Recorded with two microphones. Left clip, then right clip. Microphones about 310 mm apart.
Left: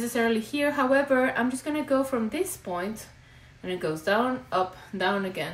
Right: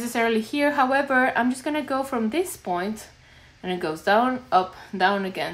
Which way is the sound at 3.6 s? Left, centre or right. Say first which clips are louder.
Right 2 dB; right.